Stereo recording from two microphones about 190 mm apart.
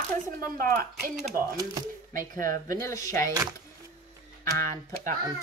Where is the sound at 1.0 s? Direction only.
50° right (ahead or behind).